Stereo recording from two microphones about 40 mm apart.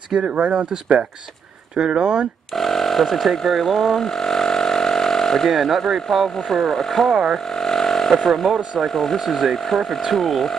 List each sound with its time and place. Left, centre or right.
0.2 s speech: right
2.5 s speech: centre
3.4 s a sound: centre
5.5 s speech: centre
7.3 s vehicle: centre
8.7 s speech: centre